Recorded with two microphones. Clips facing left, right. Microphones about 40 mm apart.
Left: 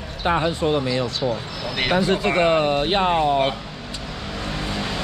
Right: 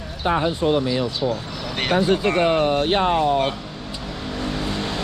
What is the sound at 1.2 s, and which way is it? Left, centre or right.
Speech, centre.